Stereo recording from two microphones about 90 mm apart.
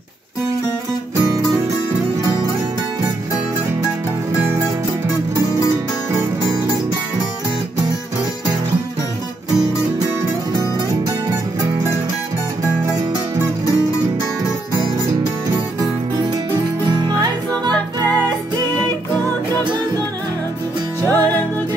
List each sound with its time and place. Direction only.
21.0 s music: 20° left (ahead or behind)